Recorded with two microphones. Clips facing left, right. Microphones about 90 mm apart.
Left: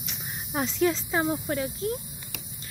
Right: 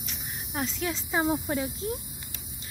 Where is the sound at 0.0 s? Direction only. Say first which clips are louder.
Left 1 dB; 5° left (ahead or behind).